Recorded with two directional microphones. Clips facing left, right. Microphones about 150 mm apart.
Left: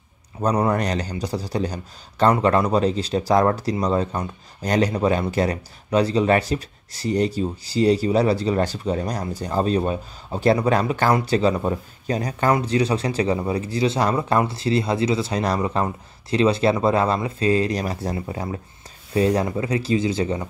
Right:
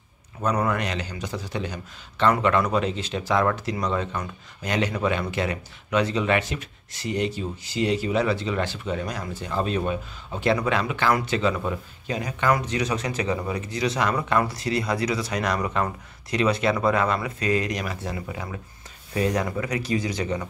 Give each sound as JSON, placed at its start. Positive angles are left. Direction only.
{"t": 0.4, "sound": "speech", "side_deg": 35}